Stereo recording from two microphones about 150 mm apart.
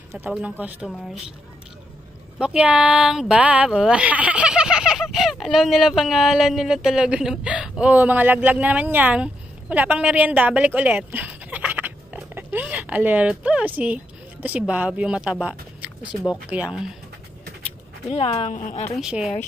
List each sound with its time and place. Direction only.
0.3 s speech: 10° right (ahead or behind)
2.3 s speech: 5° right (ahead or behind)
18.1 s a woman's voice: 40° left (ahead or behind)
18.9 s speech: 5° right (ahead or behind)